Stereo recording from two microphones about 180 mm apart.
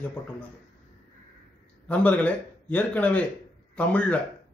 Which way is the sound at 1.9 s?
10° left (ahead or behind).